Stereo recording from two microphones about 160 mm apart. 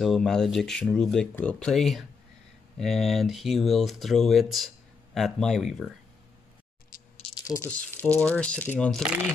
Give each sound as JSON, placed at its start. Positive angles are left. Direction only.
{"t": 0.0, "sound": "speech", "side_deg": 0}
{"t": 7.4, "sound": "speech", "side_deg": 20}